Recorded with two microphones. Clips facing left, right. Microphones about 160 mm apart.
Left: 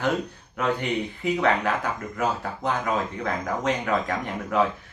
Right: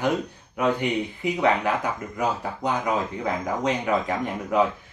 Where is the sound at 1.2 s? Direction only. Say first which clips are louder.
Right 1 dB; 15° right (ahead or behind).